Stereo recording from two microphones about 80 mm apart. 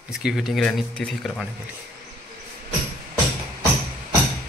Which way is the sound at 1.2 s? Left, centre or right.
Centre.